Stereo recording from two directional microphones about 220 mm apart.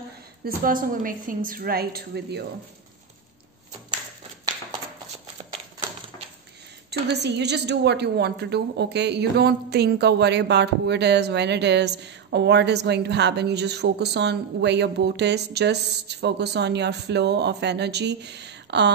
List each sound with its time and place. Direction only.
0.7 s a woman's voice: 40° right (ahead or behind)
6.9 s a woman's voice: 50° right (ahead or behind)